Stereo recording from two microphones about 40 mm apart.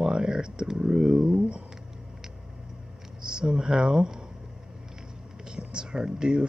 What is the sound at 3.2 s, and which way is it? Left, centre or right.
Speech, right.